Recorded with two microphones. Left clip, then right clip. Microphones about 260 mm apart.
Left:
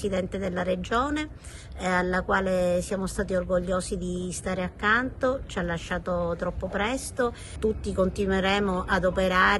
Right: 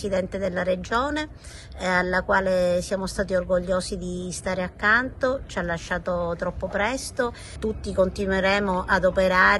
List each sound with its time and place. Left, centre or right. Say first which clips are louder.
0.0 s a woman's voice: right 3 dB; centre
4.5 s a woman's voice: right 4 dB; centre
4.8 s a woman's voice: right 3 dB; centre